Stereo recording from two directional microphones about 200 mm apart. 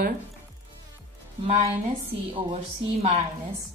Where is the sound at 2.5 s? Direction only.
30° right (ahead or behind).